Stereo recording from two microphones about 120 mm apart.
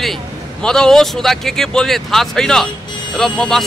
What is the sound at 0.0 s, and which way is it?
A man's voice, 5° left (ahead or behind).